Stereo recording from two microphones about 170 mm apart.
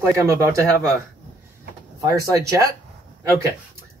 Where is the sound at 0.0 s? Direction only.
15° right (ahead or behind).